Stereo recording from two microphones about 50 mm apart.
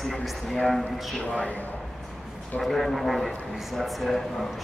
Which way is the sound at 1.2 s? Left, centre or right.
Left.